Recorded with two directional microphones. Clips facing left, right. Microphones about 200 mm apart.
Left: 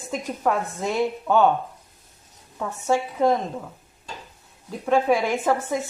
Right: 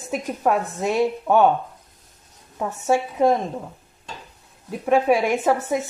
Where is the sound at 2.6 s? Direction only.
15° right (ahead or behind).